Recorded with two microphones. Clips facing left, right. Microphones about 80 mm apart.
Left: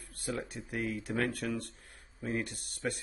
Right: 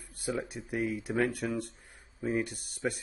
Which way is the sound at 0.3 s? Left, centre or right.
Centre.